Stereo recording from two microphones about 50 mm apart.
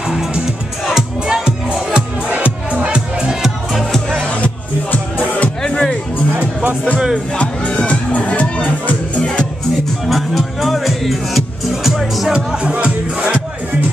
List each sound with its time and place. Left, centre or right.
0.8 s music: centre
2.3 s music: right; by 3.5 s centre
3.9 s music: centre
5.6 s music: centre
7.3 s music: left
10.0 s music: centre
12.3 s music: centre